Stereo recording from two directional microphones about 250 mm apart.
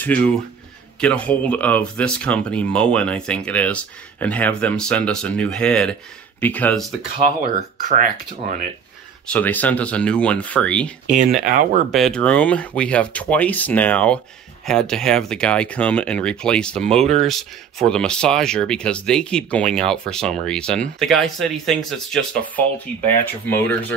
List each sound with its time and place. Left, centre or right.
0.0 s speech: centre
7.2 s speech: right
9.3 s speech: centre
11.1 s speech: right
11.9 s speech: centre
23.5 s speech: centre